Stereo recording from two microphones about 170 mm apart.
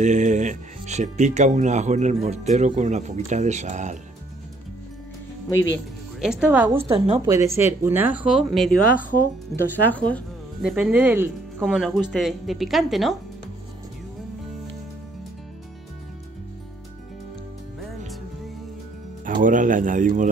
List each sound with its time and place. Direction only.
0.0 s speech: 45° right (ahead or behind)
5.5 s speech: 15° left (ahead or behind)
6.1 s speech: 5° right (ahead or behind)
6.8 s a woman's voice: 35° right (ahead or behind)
7.2 s speech: 20° right (ahead or behind); by 10.2 s 10° left (ahead or behind)
10.6 s speech: 5° right (ahead or behind)
17.7 s music: centre (ahead or behind)
19.2 s a man's voice: 50° right (ahead or behind)